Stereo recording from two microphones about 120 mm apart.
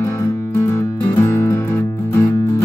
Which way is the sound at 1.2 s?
25° left (ahead or behind).